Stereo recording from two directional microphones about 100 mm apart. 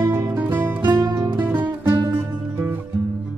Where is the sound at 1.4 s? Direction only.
20° right (ahead or behind).